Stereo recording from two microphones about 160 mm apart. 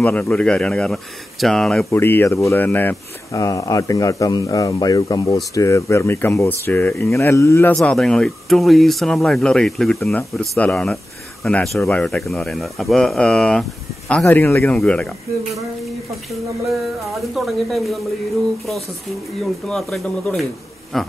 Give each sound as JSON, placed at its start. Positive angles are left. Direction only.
{"t": 0.0, "sound": "speech", "side_deg": 10}
{"t": 1.9, "sound": "speech", "side_deg": 15}
{"t": 3.4, "sound": "a man's voice", "side_deg": 20}
{"t": 7.7, "sound": "speech", "side_deg": 5}
{"t": 17.0, "sound": "speech", "side_deg": 0}
{"t": 19.7, "sound": "speech", "side_deg": 0}